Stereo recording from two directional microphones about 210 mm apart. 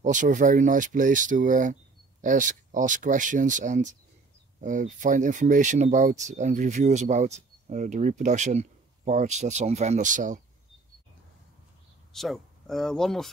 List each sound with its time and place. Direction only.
0.0 s speech: 35° right (ahead or behind)
12.1 s speech: centre (ahead or behind)